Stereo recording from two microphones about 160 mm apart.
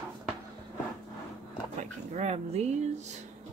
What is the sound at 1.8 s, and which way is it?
Speech, 45° right (ahead or behind).